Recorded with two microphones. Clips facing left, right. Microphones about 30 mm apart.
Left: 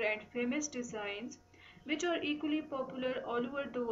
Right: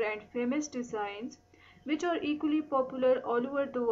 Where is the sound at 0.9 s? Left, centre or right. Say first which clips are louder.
Right 4 dB; centre.